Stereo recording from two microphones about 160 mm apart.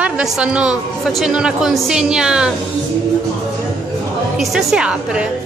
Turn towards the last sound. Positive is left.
turn(degrees=-5)  # may be behind; listen again after turning